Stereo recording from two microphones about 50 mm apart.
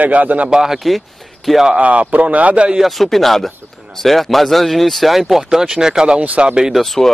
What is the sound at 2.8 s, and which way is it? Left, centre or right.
Speech, centre.